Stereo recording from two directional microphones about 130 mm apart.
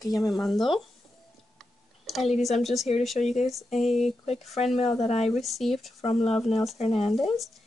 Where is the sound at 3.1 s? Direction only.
65° left (ahead or behind).